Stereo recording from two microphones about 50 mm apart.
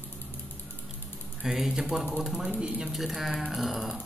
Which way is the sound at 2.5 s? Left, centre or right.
Centre.